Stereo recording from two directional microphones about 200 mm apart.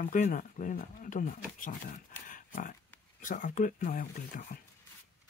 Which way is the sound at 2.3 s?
40° left (ahead or behind).